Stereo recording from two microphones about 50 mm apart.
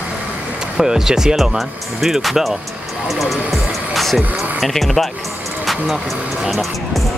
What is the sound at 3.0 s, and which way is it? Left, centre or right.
Music, centre.